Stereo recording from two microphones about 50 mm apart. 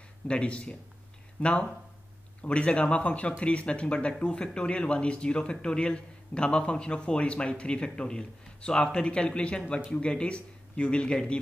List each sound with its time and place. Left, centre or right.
0.3 s speech: left